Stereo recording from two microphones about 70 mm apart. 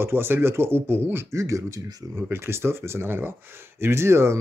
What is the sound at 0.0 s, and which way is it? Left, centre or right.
Speech, right.